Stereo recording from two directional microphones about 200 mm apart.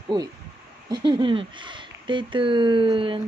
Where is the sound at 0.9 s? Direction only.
20° right (ahead or behind).